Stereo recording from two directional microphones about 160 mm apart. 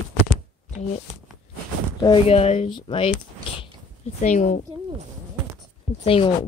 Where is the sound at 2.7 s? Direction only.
30° left (ahead or behind).